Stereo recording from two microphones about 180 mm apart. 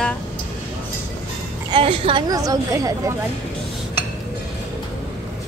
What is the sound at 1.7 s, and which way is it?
Speech, 30° right (ahead or behind).